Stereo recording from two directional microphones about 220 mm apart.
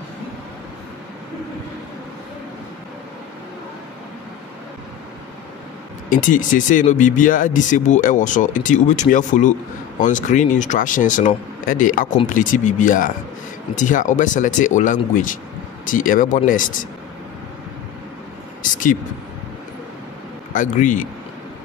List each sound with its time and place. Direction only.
6.0 s speech: 35° left (ahead or behind)
18.6 s speech: 35° left (ahead or behind)
20.5 s speech: 35° left (ahead or behind)